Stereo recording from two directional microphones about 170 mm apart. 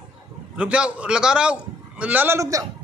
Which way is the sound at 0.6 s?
5° right (ahead or behind).